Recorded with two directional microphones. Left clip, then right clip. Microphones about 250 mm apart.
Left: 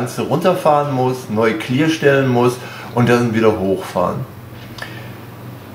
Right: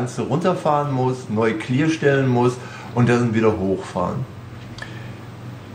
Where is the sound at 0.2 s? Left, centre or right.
Centre.